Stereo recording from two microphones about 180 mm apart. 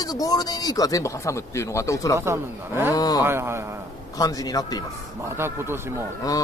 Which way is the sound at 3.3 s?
15° right (ahead or behind).